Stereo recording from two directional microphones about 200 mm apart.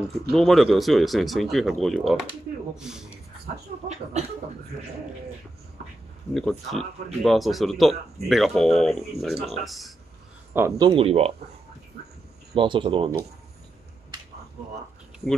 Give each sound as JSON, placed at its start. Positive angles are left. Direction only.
{"t": 0.3, "sound": "speech", "side_deg": 0}
{"t": 6.3, "sound": "speech", "side_deg": 0}
{"t": 10.5, "sound": "speech", "side_deg": -10}
{"t": 10.9, "sound": "speech", "side_deg": -30}
{"t": 12.5, "sound": "speech", "side_deg": -25}